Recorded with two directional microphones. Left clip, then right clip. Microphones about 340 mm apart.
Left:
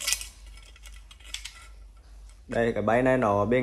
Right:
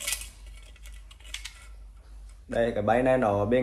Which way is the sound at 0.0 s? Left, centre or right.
Centre.